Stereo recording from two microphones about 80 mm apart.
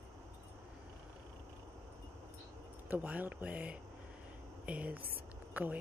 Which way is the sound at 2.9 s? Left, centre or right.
Right.